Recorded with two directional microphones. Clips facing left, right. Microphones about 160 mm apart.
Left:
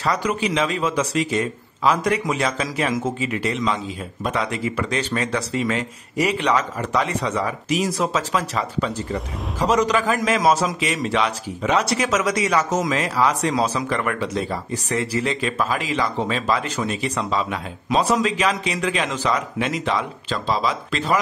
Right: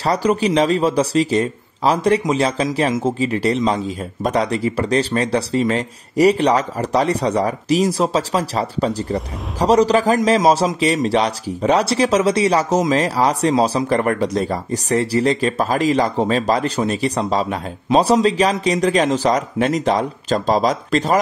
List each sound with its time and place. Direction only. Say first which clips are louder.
0.0 s a man's voice: right 5 dB; 35° right (ahead or behind)